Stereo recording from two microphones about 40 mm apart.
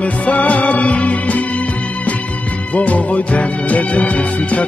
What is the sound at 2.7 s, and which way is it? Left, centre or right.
Music, left.